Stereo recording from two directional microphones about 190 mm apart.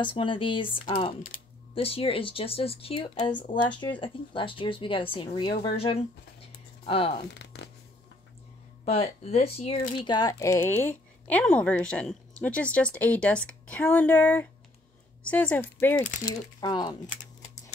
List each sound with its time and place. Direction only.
0.0 s speech: 25° left (ahead or behind)
7.3 s speech: 65° left (ahead or behind)
8.8 s speech: 35° left (ahead or behind); by 16.1 s 10° left (ahead or behind)
16.6 s speech: 25° left (ahead or behind)